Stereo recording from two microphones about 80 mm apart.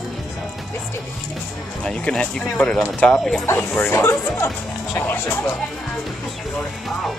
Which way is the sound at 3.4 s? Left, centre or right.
Left.